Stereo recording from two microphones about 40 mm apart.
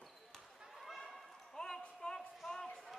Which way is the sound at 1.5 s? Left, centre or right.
Centre.